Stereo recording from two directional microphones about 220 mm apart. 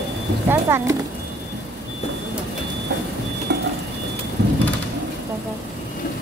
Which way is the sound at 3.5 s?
55° right (ahead or behind).